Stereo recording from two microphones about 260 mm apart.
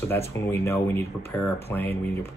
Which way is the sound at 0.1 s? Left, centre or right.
Centre.